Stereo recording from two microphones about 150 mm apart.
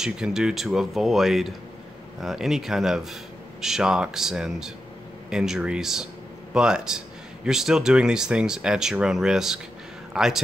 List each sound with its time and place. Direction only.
0.0 s speech: 5° right (ahead or behind)